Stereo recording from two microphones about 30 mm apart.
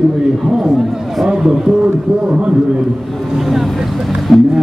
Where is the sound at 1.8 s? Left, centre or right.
Right.